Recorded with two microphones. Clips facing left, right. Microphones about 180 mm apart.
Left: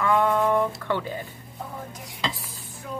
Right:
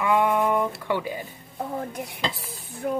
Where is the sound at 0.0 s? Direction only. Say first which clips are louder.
Even; 15° right (ahead or behind).